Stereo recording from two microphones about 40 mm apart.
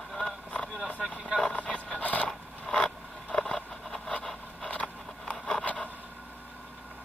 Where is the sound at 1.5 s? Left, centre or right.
Left.